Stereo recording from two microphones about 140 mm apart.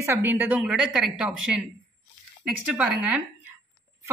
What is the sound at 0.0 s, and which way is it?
A woman's voice, 15° right (ahead or behind).